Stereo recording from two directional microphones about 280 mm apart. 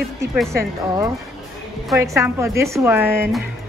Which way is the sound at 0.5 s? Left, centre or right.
Centre.